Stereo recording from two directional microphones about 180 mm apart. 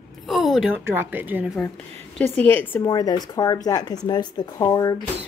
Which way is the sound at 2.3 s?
10° left (ahead or behind).